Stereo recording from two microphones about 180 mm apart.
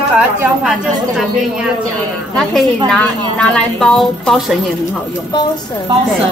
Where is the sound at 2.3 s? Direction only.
5° left (ahead or behind).